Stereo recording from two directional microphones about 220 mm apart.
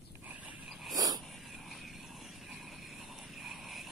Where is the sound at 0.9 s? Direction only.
15° right (ahead or behind).